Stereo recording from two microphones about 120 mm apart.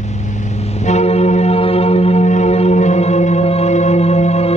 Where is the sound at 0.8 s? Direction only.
70° left (ahead or behind).